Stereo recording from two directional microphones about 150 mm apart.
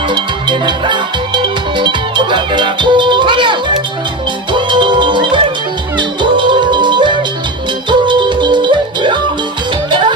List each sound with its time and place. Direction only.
0.1 s music: 30° right (ahead or behind)
4.6 s music: 30° right (ahead or behind)